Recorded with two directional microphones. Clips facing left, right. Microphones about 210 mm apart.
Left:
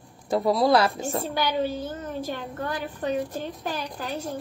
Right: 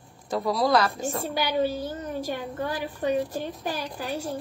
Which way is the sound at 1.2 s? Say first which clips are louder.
Right 2 dB; 10° right (ahead or behind).